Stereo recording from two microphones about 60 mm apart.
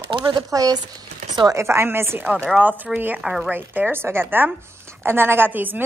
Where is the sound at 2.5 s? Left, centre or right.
Right.